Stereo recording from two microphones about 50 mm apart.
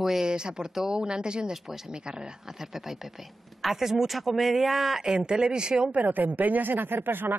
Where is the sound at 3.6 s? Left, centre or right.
Centre.